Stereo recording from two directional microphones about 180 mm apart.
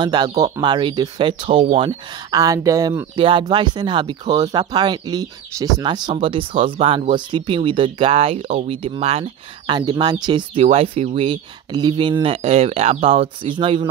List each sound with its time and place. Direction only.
0.0 s speech: 25° right (ahead or behind)